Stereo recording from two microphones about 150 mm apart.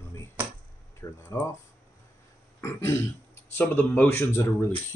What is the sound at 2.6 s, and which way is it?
Speech, 15° left (ahead or behind).